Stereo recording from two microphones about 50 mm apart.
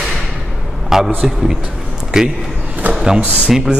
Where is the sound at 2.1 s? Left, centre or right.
Centre.